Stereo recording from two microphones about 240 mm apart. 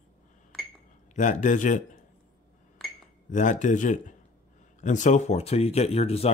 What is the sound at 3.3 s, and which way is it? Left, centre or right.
Speech, left.